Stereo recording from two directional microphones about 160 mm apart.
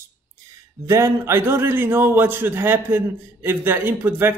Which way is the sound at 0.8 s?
20° right (ahead or behind).